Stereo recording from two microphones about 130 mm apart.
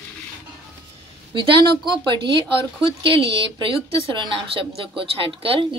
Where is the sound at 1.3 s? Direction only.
35° right (ahead or behind).